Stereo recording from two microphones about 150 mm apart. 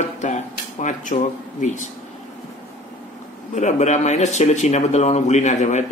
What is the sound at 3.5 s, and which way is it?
Speech, 50° left (ahead or behind).